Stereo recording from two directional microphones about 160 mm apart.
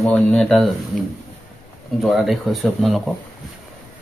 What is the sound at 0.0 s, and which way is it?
Speech, 5° left (ahead or behind).